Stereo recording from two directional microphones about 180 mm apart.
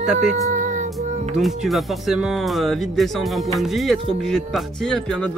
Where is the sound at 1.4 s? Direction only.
Centre (ahead or behind).